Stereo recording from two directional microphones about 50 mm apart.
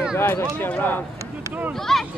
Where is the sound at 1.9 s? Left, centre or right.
Centre.